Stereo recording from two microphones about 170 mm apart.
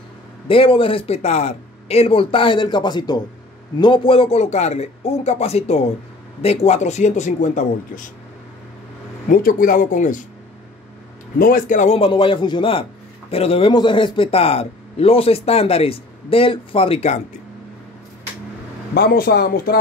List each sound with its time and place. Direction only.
0.5 s a man's voice: 35° left (ahead or behind)
9.3 s speech: 55° left (ahead or behind)
11.3 s a man's voice: 55° left (ahead or behind)
18.9 s speech: 65° left (ahead or behind)